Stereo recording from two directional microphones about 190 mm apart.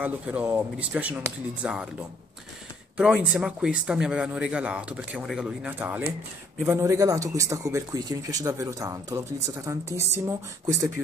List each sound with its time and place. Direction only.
0.0 s speech: 10° right (ahead or behind)
3.0 s a man's voice: 5° right (ahead or behind)